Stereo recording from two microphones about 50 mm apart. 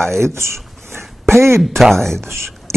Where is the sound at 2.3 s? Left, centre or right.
Right.